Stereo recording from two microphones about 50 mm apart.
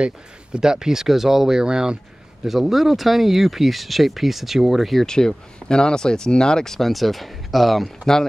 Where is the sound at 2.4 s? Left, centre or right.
Centre.